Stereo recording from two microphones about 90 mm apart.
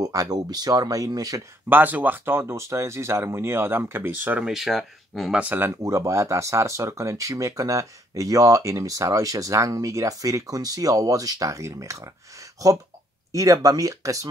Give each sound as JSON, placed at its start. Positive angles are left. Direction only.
{"t": 0.0, "sound": "speech", "side_deg": -45}
{"t": 1.7, "sound": "speech", "side_deg": -20}
{"t": 4.5, "sound": "speech", "side_deg": 0}
{"t": 5.3, "sound": "speech", "side_deg": -20}